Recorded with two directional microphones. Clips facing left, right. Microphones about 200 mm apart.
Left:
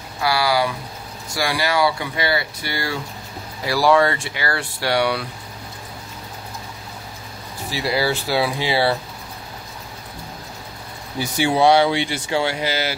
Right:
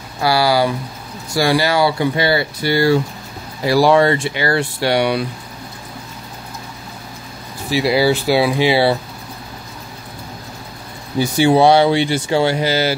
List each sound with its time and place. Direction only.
0.2 s speech: 30° right (ahead or behind)
7.7 s speech: 10° right (ahead or behind)
11.1 s speech: 30° right (ahead or behind)